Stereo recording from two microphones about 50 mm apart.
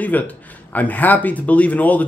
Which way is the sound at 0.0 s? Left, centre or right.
Left.